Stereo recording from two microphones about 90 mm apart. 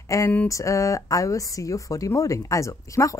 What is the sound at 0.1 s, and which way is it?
Speech, 35° left (ahead or behind).